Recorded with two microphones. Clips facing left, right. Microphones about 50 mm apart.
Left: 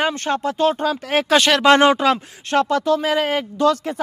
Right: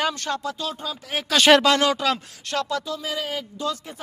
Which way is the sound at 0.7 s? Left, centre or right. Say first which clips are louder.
Left 10 dB; left.